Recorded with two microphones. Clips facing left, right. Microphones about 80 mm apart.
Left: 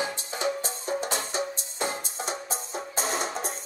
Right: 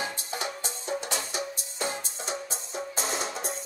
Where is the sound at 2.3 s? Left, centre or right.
Left.